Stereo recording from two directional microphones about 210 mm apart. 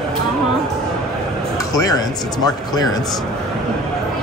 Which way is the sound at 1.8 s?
20° left (ahead or behind).